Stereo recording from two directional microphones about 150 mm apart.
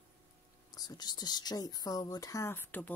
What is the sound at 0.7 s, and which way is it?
Speech, 25° left (ahead or behind).